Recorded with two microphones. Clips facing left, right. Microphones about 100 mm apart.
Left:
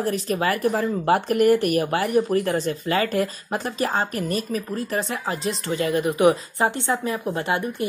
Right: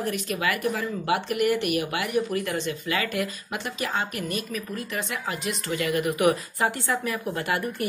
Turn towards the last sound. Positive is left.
turn(degrees=25)  # may be behind; listen again after turning